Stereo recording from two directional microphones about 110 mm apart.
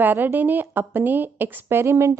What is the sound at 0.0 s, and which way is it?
A woman's voice, 15° right (ahead or behind).